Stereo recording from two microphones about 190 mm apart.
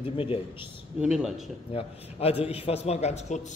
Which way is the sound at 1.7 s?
30° left (ahead or behind).